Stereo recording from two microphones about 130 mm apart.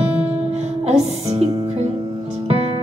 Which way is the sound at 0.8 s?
55° right (ahead or behind).